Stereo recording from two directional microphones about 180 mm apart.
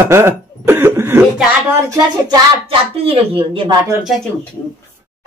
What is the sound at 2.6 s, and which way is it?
Speech, 30° right (ahead or behind).